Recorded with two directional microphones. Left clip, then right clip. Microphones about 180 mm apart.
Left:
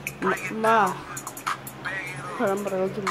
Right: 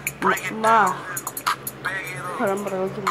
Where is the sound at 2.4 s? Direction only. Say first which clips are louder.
Right 1 dB; 10° left (ahead or behind).